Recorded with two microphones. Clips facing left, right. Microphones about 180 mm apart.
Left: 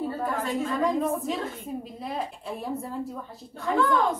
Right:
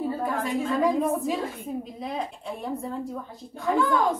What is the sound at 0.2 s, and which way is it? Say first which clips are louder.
A woman's voice: right 1 dB; 10° right (ahead or behind).